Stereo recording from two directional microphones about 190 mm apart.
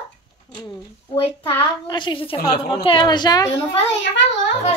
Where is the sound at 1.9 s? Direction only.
25° left (ahead or behind).